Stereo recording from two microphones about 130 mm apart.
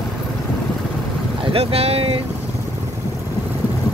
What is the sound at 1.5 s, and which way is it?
Speech, 50° right (ahead or behind).